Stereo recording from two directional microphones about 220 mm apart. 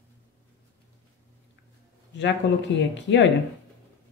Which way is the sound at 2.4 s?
50° left (ahead or behind).